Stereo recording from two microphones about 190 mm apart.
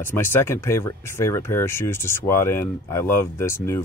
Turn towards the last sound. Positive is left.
turn(degrees=15)  # may be behind; listen again after turning